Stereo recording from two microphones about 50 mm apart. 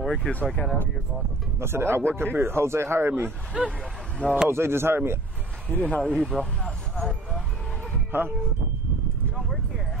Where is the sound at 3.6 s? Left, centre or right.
Centre.